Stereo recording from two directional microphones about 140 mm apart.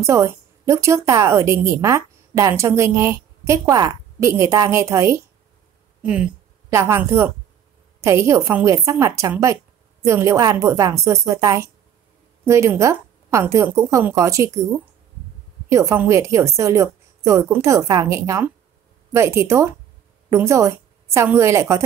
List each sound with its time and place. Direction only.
0.0 s a woman's voice: 20° right (ahead or behind)
6.7 s a woman's voice: 20° right (ahead or behind)
15.7 s a woman's voice: 20° right (ahead or behind)